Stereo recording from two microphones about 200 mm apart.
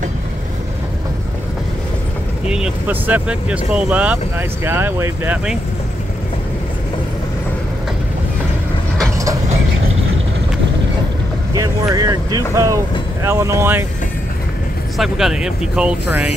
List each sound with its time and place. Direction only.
2.4 s speech: 5° right (ahead or behind)
11.5 s speech: 15° right (ahead or behind)
15.0 s speech: centre (ahead or behind)